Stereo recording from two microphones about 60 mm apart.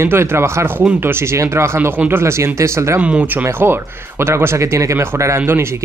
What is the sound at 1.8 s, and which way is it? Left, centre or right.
Speech, right.